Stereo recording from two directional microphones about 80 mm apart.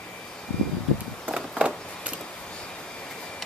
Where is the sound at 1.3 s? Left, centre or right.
Centre.